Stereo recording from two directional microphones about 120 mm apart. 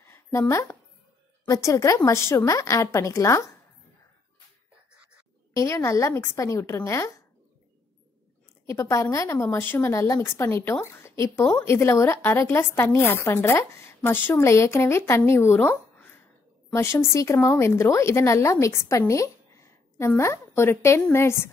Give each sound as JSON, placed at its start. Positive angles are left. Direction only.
{"t": 0.0, "sound": "a sound", "side_deg": 20}
{"t": 1.5, "sound": "a woman's voice", "side_deg": 25}
{"t": 5.5, "sound": "a woman's voice", "side_deg": 25}
{"t": 8.6, "sound": "a woman's voice", "side_deg": 25}